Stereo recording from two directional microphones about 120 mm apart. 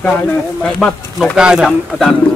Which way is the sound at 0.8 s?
Centre (ahead or behind).